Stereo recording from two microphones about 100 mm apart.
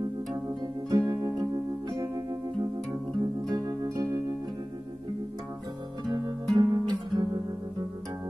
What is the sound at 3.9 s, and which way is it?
Music, 35° right (ahead or behind).